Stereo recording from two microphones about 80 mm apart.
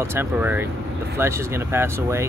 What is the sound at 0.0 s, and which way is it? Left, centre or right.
Speech, right.